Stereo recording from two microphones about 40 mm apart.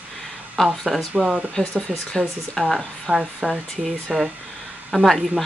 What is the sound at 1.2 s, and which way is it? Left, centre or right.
Speech, centre.